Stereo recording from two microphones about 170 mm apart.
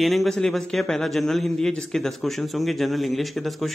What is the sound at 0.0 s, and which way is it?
A man's voice, centre (ahead or behind).